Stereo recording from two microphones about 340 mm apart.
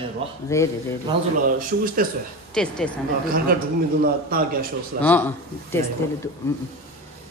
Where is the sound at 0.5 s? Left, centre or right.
Centre.